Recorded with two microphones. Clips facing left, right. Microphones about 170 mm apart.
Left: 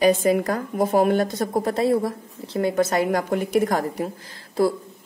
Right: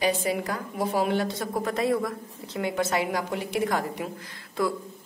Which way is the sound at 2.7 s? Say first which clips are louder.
Left 5 dB; 45° left (ahead or behind).